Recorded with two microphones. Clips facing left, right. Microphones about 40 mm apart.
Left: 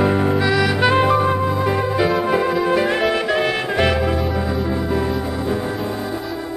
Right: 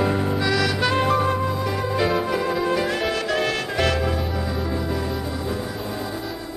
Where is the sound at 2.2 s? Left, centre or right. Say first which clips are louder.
Left 5 dB; left.